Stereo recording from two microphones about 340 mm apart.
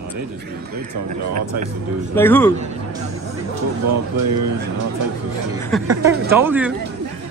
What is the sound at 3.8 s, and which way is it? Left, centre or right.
Speech, right.